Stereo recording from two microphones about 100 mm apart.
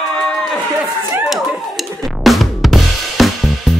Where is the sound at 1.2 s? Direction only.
5° right (ahead or behind).